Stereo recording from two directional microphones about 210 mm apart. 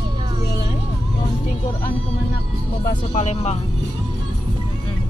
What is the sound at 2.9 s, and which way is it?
Speech, 35° left (ahead or behind).